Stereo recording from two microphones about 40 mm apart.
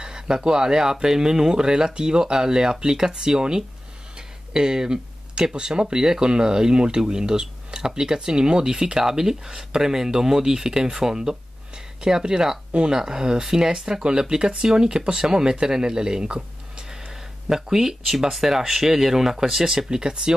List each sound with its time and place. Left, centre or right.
0.0 s speech: centre